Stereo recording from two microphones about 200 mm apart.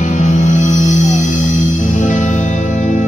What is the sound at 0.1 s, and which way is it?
Music, 35° left (ahead or behind).